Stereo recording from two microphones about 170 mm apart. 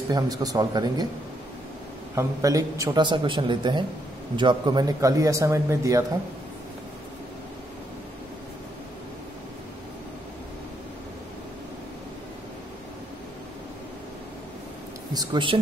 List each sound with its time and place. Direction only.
0.1 s speech: 20° right (ahead or behind)
2.1 s speech: 20° right (ahead or behind)
15.1 s speech: 30° right (ahead or behind)